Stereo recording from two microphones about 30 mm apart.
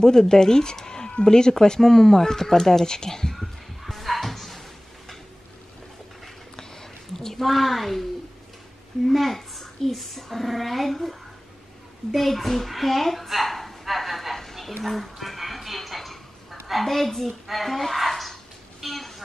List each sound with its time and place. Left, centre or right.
0.0 s speech: centre
3.3 s a sound: centre
6.5 s a sound: centre
7.4 s a child's voice: centre
9.0 s a child's voice: centre
18.8 s vehicle: centre